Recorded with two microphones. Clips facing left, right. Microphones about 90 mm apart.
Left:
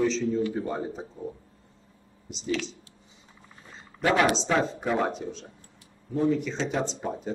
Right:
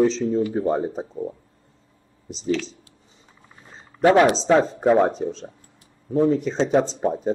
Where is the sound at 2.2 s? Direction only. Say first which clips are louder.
Right 5 dB; 35° right (ahead or behind).